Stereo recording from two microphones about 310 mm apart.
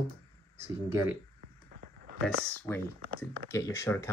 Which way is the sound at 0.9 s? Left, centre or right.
Centre.